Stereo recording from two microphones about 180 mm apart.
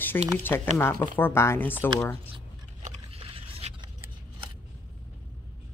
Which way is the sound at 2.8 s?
30° right (ahead or behind).